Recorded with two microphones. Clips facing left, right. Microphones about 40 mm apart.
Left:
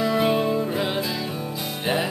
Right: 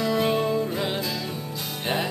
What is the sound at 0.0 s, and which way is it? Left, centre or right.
Music, centre.